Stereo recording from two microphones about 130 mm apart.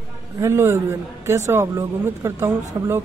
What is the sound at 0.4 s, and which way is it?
Speech, 20° right (ahead or behind).